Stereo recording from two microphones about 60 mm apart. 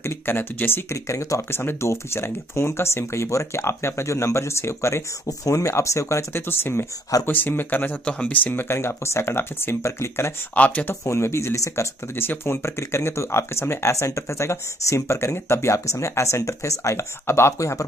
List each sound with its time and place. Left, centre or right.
0.0 s speech: left
1.0 s speech: left
1.6 s speech: left
8.0 s speech: centre
8.5 s speech: left
10.5 s speech: left
10.9 s speech: left
12.2 s speech: left